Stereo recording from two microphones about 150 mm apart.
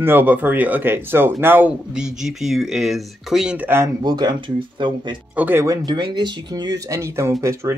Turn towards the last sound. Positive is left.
turn(degrees=-20)  # may be behind; listen again after turning